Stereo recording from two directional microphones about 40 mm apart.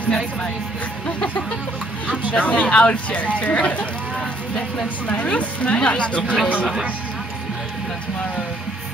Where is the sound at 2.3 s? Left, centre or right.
Left.